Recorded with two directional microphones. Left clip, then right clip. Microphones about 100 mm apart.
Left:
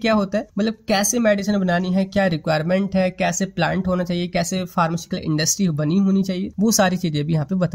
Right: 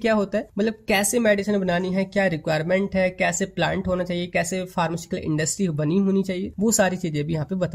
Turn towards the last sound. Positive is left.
turn(degrees=45)  # may be behind; listen again after turning